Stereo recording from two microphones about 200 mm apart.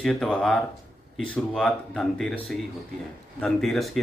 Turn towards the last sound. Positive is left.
turn(degrees=0)  # may be behind; listen again after turning